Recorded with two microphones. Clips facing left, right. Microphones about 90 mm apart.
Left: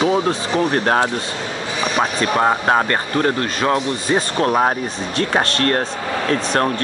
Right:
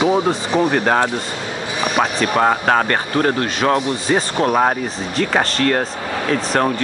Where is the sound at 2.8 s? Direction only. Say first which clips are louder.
Right 1 dB; 30° right (ahead or behind).